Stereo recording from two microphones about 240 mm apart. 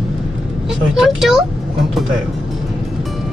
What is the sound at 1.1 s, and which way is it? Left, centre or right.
Speech, centre.